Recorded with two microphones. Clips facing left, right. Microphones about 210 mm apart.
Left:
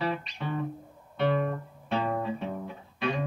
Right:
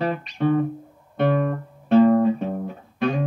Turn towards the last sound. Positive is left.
turn(degrees=-45)  # may be behind; listen again after turning